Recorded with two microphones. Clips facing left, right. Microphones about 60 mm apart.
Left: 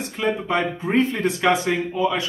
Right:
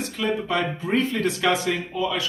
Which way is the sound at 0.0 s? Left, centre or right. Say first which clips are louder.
Left 2 dB; left.